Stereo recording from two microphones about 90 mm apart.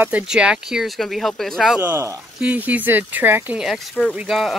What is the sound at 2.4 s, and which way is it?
Speech, 15° right (ahead or behind).